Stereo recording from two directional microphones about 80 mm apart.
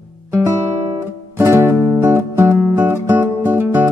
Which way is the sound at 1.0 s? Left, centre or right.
Right.